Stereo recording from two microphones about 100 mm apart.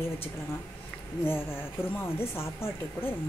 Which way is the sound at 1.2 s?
25° left (ahead or behind).